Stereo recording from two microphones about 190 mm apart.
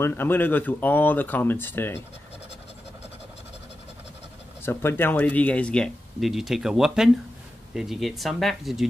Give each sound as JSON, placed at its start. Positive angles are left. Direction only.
{"t": 0.0, "sound": "speech", "side_deg": 10}
{"t": 4.6, "sound": "speech", "side_deg": 10}